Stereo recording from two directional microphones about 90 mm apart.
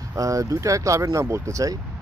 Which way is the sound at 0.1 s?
40° right (ahead or behind).